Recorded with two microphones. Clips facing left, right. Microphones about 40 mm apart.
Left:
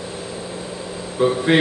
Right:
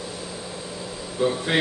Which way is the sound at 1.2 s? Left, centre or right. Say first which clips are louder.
Left 6 dB; centre.